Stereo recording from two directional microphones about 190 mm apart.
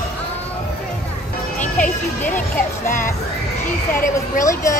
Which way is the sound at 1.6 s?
10° left (ahead or behind).